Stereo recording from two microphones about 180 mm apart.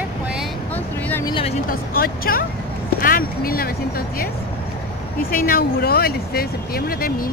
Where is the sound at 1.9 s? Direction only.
55° left (ahead or behind).